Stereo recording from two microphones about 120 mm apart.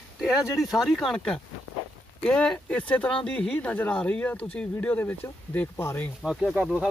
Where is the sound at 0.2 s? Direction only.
Centre (ahead or behind); by 6.0 s 15° left (ahead or behind).